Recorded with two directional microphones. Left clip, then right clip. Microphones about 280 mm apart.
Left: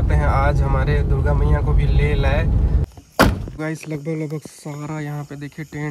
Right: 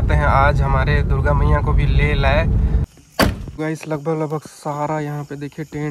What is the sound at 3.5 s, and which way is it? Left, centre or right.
Speech, centre.